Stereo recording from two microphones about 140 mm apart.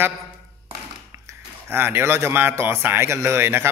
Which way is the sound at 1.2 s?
15° right (ahead or behind).